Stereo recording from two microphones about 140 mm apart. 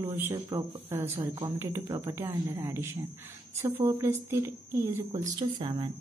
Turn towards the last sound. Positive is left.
turn(degrees=-35)  # may be behind; listen again after turning